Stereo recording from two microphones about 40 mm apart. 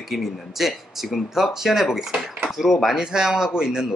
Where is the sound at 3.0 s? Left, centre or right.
Centre.